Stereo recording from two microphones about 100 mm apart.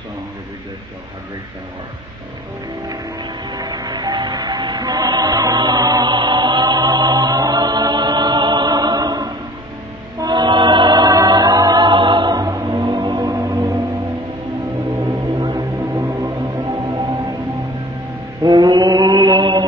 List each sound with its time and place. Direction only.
2.9 s music: 45° right (ahead or behind)
15.0 s music: 45° right (ahead or behind)
18.4 s mantra: 45° right (ahead or behind)